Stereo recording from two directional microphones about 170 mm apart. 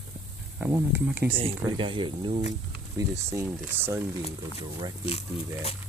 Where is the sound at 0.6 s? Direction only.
15° right (ahead or behind).